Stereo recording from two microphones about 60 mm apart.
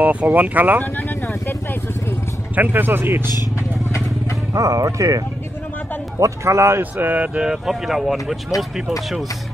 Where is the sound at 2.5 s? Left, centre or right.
Right.